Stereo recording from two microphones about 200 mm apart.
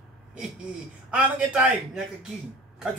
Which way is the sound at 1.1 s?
5° right (ahead or behind).